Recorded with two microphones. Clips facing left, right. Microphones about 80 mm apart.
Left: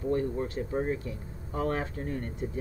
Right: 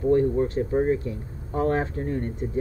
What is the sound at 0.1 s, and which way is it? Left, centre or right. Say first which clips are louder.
Speech: right 9 dB; right.